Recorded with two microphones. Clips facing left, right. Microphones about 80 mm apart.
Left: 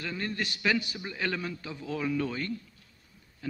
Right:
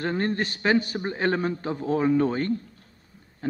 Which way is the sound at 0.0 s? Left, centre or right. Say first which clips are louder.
Right 8 dB; right.